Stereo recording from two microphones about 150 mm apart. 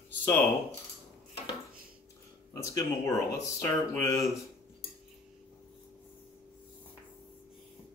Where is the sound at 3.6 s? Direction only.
20° left (ahead or behind).